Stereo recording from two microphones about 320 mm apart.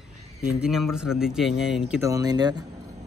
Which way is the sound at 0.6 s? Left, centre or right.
Centre.